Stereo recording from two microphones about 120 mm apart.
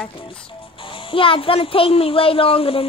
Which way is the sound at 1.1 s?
50° left (ahead or behind).